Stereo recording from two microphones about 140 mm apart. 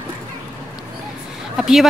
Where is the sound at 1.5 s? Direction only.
Centre (ahead or behind).